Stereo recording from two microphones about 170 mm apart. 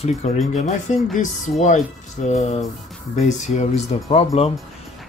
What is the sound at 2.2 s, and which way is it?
Speech, 40° left (ahead or behind).